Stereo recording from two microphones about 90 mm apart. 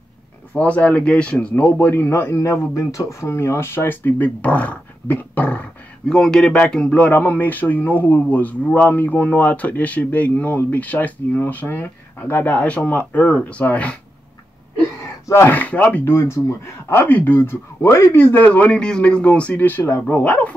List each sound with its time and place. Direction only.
0.6 s a man's voice: 15° left (ahead or behind)
15.2 s speech: 30° left (ahead or behind)
15.5 s speech: 15° left (ahead or behind)
16.2 s a man's voice: 30° left (ahead or behind)